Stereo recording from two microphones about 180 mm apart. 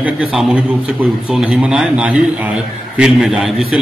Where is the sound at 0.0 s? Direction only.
5° right (ahead or behind).